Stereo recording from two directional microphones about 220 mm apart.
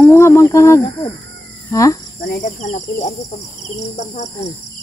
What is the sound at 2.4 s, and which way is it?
Speech, 35° left (ahead or behind).